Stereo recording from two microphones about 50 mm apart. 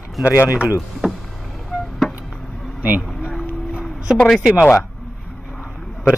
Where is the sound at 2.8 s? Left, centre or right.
Right.